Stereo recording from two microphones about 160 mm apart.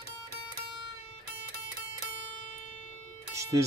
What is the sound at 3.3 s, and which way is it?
Music, 20° right (ahead or behind).